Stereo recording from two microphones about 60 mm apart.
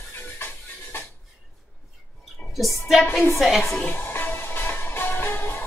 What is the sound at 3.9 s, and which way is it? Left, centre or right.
Music, left.